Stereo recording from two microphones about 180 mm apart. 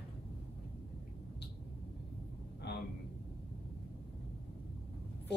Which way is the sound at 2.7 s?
70° left (ahead or behind).